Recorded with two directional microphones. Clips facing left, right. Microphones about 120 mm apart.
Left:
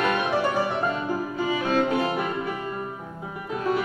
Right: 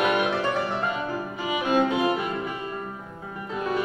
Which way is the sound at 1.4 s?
15° right (ahead or behind).